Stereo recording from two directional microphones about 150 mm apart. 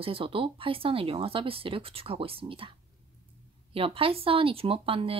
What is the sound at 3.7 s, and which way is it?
Speech, 40° right (ahead or behind).